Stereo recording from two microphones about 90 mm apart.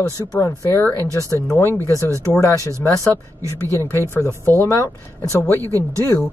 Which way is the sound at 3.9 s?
30° left (ahead or behind).